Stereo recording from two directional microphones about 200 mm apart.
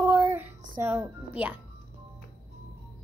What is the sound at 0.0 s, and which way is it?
Music, 10° right (ahead or behind).